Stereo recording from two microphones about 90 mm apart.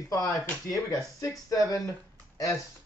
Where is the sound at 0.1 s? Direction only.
40° left (ahead or behind).